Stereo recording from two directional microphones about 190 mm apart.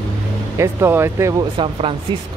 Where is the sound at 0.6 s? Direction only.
15° right (ahead or behind).